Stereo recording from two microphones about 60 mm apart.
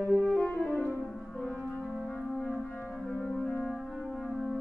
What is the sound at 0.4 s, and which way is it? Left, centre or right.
Music, centre.